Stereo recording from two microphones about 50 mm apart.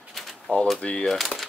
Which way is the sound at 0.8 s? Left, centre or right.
Centre.